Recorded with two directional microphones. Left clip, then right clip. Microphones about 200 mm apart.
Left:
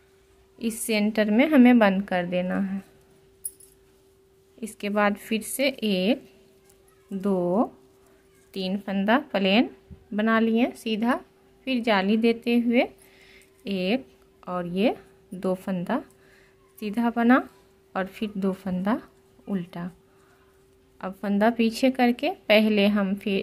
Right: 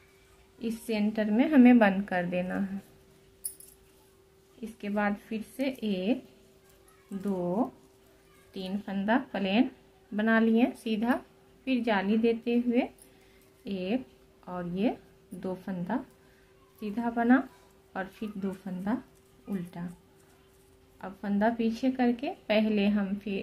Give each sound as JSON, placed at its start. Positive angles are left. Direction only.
{"t": 0.6, "sound": "a woman's voice", "side_deg": 40}
{"t": 4.6, "sound": "a woman's voice", "side_deg": 40}
{"t": 7.2, "sound": "a woman's voice", "side_deg": 45}
{"t": 21.0, "sound": "a woman's voice", "side_deg": 40}